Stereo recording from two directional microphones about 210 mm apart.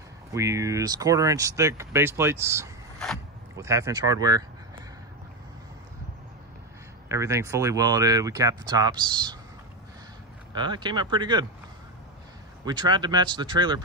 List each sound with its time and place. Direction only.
0.3 s speech: 15° right (ahead or behind)
7.1 s speech: 15° right (ahead or behind)
10.5 s speech: 20° right (ahead or behind)
12.6 s speech: 20° right (ahead or behind)